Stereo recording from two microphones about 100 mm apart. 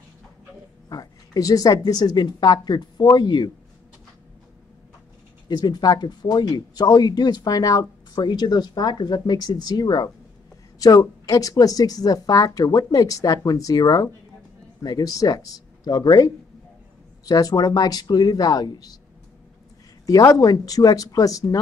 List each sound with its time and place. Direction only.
0.8 s speech: 40° left (ahead or behind)
5.5 s speech: 45° left (ahead or behind)
17.3 s speech: 40° left (ahead or behind)
20.1 s speech: 35° left (ahead or behind)